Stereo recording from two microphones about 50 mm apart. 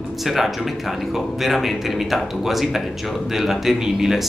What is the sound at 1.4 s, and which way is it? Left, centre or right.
A man's voice, centre.